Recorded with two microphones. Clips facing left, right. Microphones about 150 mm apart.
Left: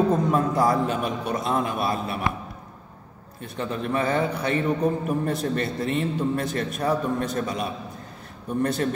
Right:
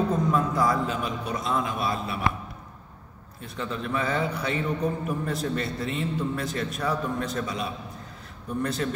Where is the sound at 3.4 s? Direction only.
50° left (ahead or behind).